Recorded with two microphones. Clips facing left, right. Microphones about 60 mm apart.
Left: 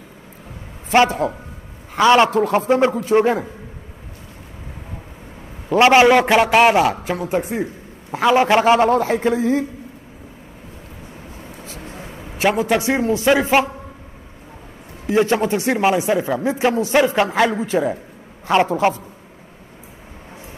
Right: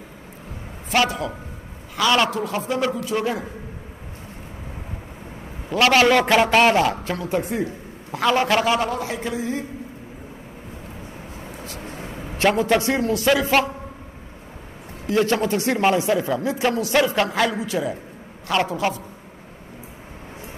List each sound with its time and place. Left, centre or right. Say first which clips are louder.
0.9 s a man's voice: left 6 dB; left
5.8 s a man's voice: left 5 dB; left
7.2 s speech: left 2 dB; left
8.9 s a man's voice: left 9 dB; left
12.4 s a man's voice: left 1 dB; centre
15.0 s a man's voice: left 3 dB; left